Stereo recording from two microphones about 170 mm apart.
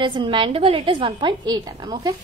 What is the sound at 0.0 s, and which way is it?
A woman's voice, 30° right (ahead or behind).